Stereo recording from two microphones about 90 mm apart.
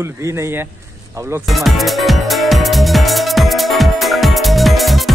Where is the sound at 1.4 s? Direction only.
Centre (ahead or behind).